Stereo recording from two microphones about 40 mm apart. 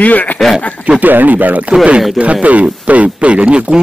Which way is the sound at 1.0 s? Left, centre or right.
Right.